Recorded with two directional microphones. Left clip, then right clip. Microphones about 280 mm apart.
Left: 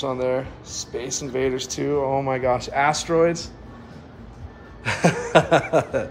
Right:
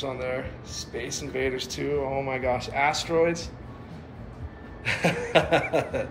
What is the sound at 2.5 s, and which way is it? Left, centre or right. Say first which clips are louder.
Speech: left 4 dB; left.